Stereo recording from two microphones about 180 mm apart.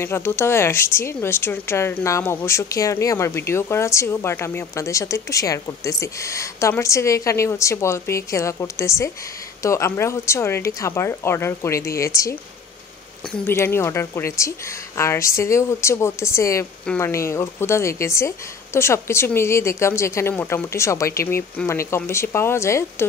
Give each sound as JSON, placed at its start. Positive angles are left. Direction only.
{"t": 0.0, "sound": "speech", "side_deg": 15}